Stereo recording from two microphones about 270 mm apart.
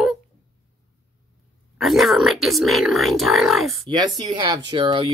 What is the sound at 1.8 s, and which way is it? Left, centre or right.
Speech, centre.